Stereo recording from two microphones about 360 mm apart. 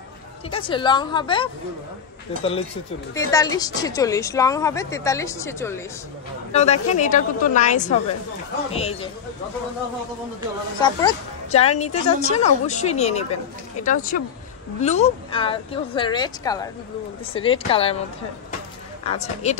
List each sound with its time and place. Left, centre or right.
0.5 s speech: centre
3.3 s speech: centre
6.5 s a woman's voice: centre
10.8 s a woman's voice: centre
19.0 s a woman's voice: centre